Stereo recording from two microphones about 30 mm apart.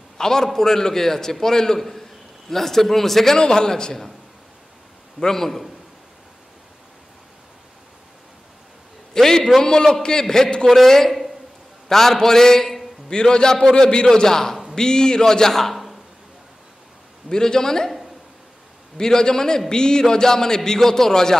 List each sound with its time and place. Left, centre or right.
0.2 s a man's voice: centre
3.3 s a man's voice: left
5.2 s a man's voice: centre
9.1 s a man's voice: centre
13.1 s a man's voice: left; by 15.8 s centre
17.3 s a man's voice: centre
18.9 s a man's voice: left